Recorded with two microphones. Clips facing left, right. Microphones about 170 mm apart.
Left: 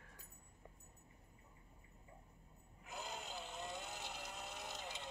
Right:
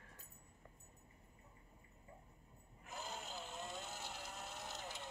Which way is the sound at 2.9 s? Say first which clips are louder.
Even; 15° left (ahead or behind).